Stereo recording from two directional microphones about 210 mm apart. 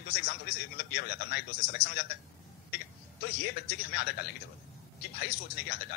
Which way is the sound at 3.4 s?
50° left (ahead or behind).